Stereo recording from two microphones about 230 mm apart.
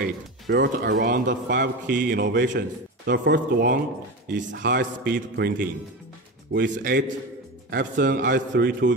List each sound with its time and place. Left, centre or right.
0.0 s a man's voice: right
6.5 s speech: right